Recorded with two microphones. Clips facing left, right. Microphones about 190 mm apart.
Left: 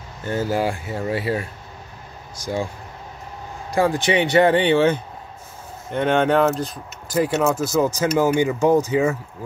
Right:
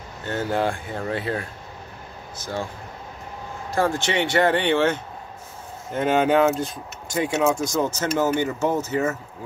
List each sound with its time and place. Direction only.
0.3 s speech: 10° left (ahead or behind)
3.7 s speech: 15° left (ahead or behind)
5.9 s speech: 5° right (ahead or behind); by 9.1 s 15° left (ahead or behind)